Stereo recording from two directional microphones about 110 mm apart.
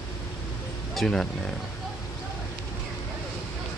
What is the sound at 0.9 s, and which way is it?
Speech, 5° left (ahead or behind).